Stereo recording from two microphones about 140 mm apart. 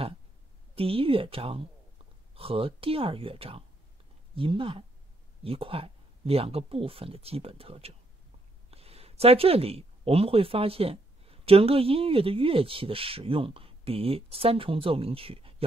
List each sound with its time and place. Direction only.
0.7 s speech: 40° right (ahead or behind)